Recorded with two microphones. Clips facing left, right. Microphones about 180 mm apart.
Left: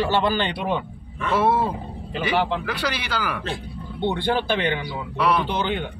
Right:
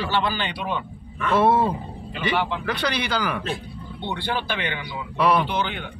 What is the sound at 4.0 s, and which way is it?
Speech, 50° left (ahead or behind).